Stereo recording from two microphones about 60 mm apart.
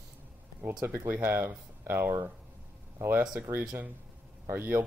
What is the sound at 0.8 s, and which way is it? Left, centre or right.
Speech, right.